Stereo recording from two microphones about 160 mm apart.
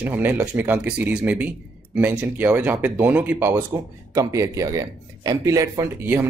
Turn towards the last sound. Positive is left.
turn(degrees=-15)  # may be behind; listen again after turning